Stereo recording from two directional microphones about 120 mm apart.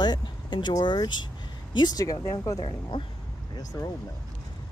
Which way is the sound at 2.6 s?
40° left (ahead or behind).